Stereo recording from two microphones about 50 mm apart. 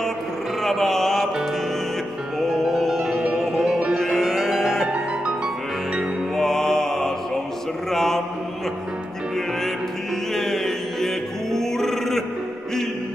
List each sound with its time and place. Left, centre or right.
0.6 s music: centre
2.5 s music: centre
4.9 s music: right
6.3 s music: centre
7.9 s mantra: centre
10.3 s music: centre